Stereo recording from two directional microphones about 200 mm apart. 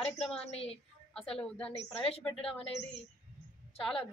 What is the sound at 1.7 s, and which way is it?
Speech, 25° left (ahead or behind).